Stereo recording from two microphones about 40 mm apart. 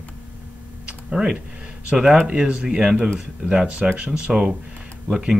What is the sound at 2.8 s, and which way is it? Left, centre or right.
Speech, centre.